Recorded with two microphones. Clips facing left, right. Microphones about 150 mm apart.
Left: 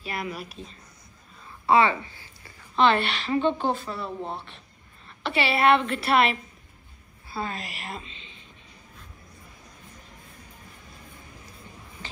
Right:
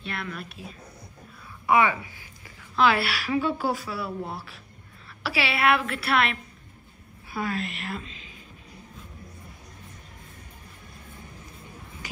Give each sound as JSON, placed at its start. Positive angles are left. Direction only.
{"t": 0.0, "sound": "a woman's voice", "side_deg": 5}
{"t": 1.7, "sound": "a woman's voice", "side_deg": -15}
{"t": 7.5, "sound": "speech", "side_deg": 0}